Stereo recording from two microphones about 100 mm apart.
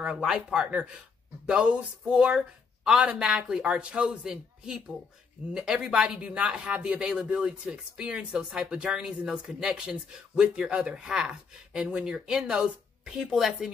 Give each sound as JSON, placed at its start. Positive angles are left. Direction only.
{"t": 0.0, "sound": "speech", "side_deg": -5}